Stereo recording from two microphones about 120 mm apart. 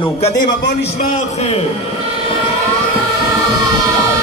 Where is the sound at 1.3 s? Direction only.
60° left (ahead or behind).